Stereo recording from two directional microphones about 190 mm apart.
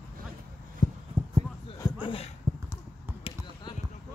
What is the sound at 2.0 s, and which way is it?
Speech, 30° left (ahead or behind).